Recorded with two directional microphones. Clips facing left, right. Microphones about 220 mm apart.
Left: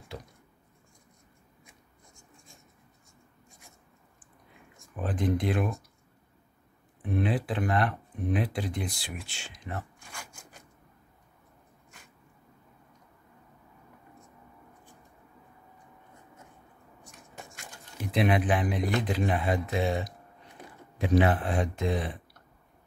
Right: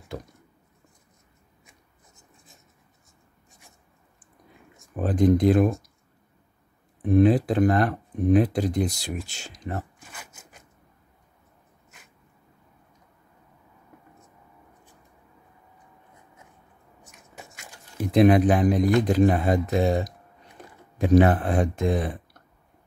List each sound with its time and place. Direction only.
3.4 s writing: centre (ahead or behind)
4.9 s speech: 40° right (ahead or behind)
7.0 s speech: 40° right (ahead or behind)
9.9 s rub: 5° right (ahead or behind)
17.0 s a sound: centre (ahead or behind)
18.1 s speech: 40° right (ahead or behind)